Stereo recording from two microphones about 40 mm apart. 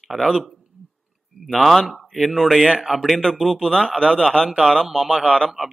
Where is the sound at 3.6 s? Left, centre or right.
Centre.